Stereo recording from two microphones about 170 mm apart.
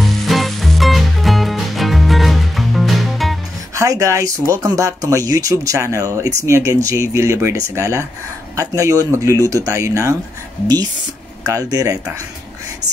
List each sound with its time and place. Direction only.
0.0 s music: centre (ahead or behind)
3.7 s speech: 20° right (ahead or behind)
11.4 s speech: 20° right (ahead or behind)